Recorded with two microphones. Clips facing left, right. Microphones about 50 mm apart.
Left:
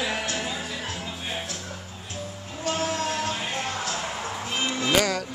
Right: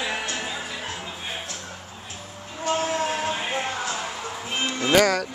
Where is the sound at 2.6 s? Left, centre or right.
Centre.